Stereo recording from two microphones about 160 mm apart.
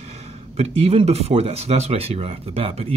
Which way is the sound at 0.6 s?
40° right (ahead or behind).